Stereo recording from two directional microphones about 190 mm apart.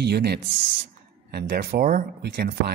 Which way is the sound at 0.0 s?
60° right (ahead or behind).